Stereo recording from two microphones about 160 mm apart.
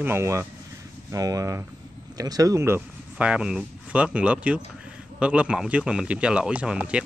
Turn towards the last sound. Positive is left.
turn(degrees=-5)  # may be behind; listen again after turning